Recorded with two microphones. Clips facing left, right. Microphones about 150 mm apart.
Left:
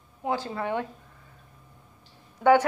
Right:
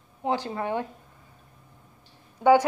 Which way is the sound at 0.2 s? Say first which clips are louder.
Right 1 dB; 20° right (ahead or behind).